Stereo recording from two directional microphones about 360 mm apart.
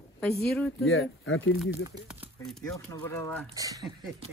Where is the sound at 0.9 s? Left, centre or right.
Left.